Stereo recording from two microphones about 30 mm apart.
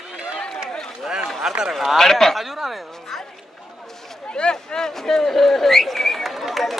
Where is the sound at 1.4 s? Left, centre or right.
Right.